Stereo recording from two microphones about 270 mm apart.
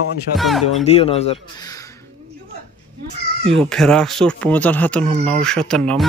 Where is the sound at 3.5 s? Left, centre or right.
Centre.